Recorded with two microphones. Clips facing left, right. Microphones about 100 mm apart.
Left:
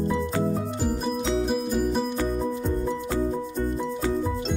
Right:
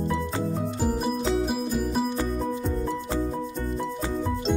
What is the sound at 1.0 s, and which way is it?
Music, 5° right (ahead or behind).